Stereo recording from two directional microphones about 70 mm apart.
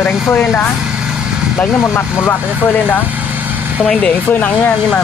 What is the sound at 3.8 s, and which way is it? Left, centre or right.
Speech, centre.